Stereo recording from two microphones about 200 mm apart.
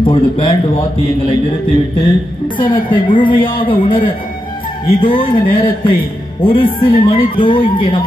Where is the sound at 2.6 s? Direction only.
25° left (ahead or behind).